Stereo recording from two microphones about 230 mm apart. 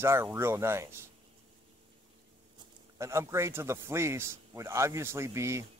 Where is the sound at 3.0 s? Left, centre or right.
Centre.